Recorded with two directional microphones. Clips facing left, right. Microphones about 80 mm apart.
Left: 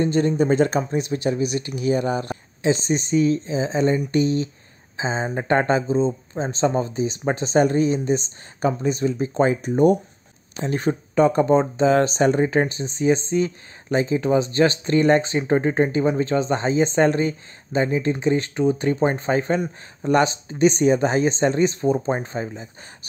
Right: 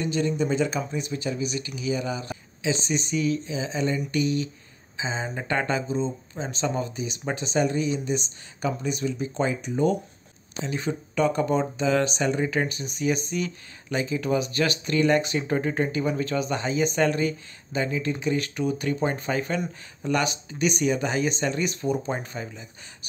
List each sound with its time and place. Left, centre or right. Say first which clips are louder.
0.0 s speech: left 6 dB; left
0.9 s speech: left 7 dB; left